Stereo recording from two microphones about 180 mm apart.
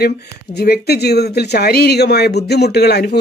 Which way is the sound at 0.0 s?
60° left (ahead or behind).